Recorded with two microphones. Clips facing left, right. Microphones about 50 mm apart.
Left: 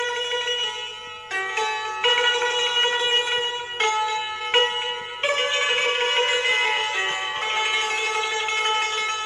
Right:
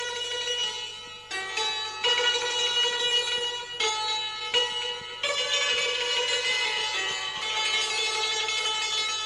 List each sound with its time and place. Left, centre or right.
1.6 s music: left